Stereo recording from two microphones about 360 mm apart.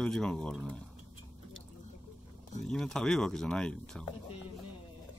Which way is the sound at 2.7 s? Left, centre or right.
Centre.